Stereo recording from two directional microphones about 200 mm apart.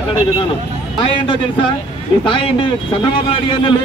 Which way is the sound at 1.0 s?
25° left (ahead or behind).